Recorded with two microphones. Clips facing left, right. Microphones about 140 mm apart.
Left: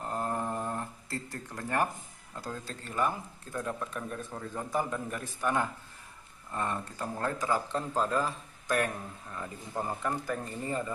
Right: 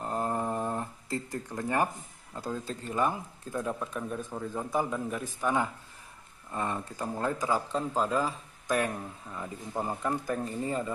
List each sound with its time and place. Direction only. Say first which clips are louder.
0.0 s a sound: right 2 dB; 20° right (ahead or behind)
1.3 s speech: right 2 dB; 15° right (ahead or behind)
2.9 s speech: right 2 dB; 15° right (ahead or behind)